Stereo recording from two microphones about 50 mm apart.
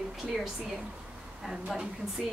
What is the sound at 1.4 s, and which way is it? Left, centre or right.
Speech, centre.